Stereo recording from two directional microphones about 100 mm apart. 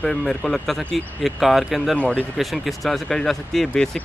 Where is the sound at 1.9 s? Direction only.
10° left (ahead or behind).